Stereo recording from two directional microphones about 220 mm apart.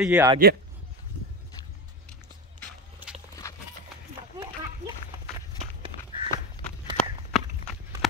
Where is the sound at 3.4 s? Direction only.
10° left (ahead or behind).